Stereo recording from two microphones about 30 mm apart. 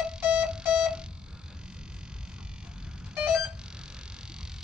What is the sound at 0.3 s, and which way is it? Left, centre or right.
Music, right.